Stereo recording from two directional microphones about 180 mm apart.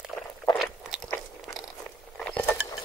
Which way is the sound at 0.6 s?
5° right (ahead or behind).